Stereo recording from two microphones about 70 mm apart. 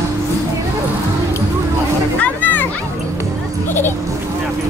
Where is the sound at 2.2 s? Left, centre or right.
Left.